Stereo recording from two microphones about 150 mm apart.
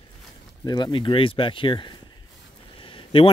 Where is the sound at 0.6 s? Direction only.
30° left (ahead or behind).